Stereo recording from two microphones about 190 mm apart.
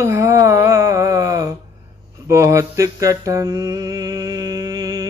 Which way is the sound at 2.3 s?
15° right (ahead or behind).